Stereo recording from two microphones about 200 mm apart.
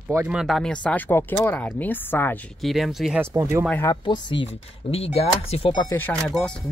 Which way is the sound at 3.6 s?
10° left (ahead or behind).